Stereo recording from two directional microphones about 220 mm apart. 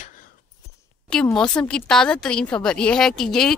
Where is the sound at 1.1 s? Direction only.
5° left (ahead or behind).